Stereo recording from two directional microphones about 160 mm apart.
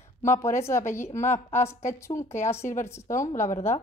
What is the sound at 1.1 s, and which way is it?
Speech, 50° left (ahead or behind).